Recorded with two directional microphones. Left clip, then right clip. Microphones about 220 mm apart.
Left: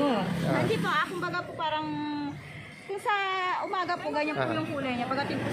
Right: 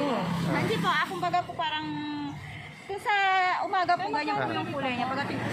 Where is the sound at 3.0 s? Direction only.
5° left (ahead or behind).